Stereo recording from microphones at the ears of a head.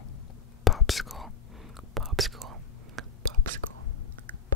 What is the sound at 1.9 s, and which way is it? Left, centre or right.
Whispering, right.